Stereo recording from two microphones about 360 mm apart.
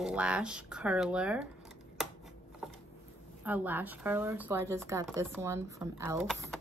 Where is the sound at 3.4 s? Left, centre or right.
Centre.